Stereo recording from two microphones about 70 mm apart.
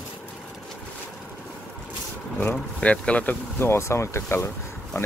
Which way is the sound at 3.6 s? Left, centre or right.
Left.